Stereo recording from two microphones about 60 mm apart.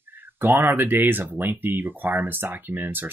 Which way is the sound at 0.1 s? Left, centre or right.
Right.